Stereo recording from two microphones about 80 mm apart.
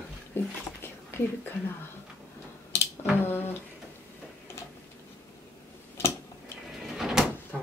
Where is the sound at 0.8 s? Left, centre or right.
Left.